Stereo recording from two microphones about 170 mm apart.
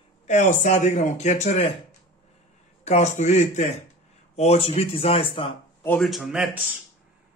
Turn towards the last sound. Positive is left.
turn(degrees=-5)  # may be behind; listen again after turning